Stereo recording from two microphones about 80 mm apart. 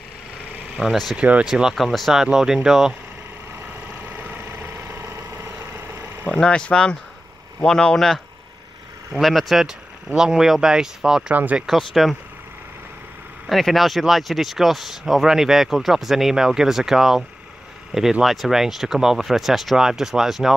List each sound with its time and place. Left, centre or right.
0.8 s speech: centre
4.2 s vehicle: right
6.2 s speech: centre
9.2 s speech: centre
11.3 s speech: centre
11.6 s speech: centre
13.5 s speech: centre
18.2 s speech: centre